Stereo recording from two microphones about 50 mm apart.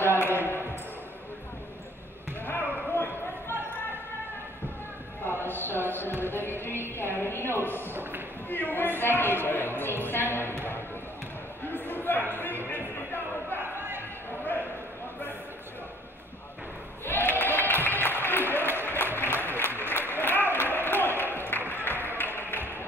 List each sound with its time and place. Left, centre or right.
2.4 s basketball bounce: left
5.2 s a sound: left
6.2 s music: left
7.9 s speech: right
8.5 s speech: left
11.7 s a sound: left
13.6 s a sound: right
17.0 s applause: left
21.4 s music: left